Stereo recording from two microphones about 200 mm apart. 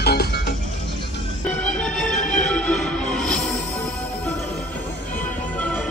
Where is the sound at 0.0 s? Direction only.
55° left (ahead or behind).